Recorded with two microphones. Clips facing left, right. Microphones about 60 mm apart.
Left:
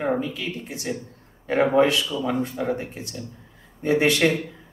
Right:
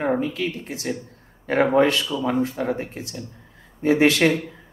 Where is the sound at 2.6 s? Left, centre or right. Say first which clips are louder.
Right 1 dB; right.